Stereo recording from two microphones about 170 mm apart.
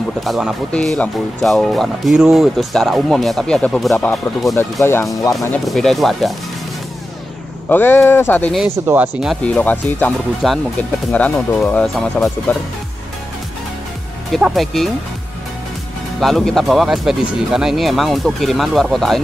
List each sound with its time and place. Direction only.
0.2 s speech: centre (ahead or behind)
4.8 s speech: 15° left (ahead or behind)
5.7 s speech: centre (ahead or behind)
7.7 s speech: 15° left (ahead or behind)
8.8 s speech: 10° right (ahead or behind)
9.2 s speech: 5° left (ahead or behind)
14.3 s speech: centre (ahead or behind)
16.2 s speech: centre (ahead or behind)